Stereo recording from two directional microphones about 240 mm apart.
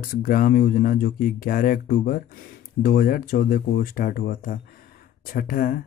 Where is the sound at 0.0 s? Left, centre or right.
Left.